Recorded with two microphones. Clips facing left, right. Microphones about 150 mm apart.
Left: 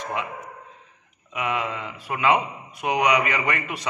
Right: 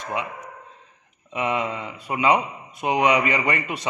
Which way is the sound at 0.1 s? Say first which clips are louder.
Right 5 dB; 20° right (ahead or behind).